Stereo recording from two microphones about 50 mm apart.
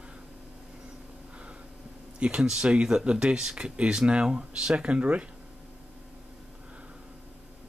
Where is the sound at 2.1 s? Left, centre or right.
Right.